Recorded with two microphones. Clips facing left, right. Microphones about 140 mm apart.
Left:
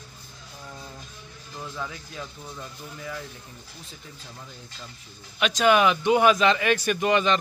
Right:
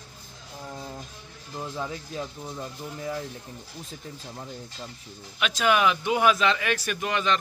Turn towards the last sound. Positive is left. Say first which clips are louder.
# left 4 dB
turn(degrees=0)  # may be behind; listen again after turning